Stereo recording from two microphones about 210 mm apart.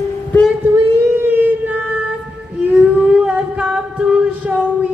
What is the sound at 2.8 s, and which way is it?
Singing, 5° right (ahead or behind).